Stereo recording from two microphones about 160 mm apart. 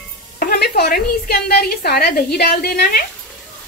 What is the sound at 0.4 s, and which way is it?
A woman's voice, 75° left (ahead or behind).